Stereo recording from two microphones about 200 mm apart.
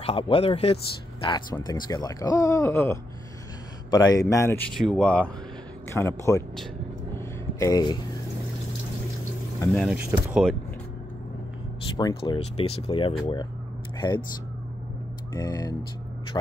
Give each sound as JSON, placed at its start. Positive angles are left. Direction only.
{"t": 0.0, "sound": "speech", "side_deg": 30}
{"t": 7.2, "sound": "a sound", "side_deg": 15}
{"t": 9.9, "sound": "speech", "side_deg": -5}
{"t": 12.0, "sound": "speech", "side_deg": 25}
{"t": 15.3, "sound": "speech", "side_deg": 20}